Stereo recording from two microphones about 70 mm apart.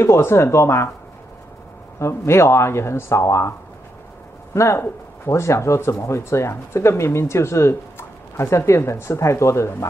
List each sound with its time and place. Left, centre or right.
0.0 s speech: left
2.0 s speech: left
4.6 s speech: left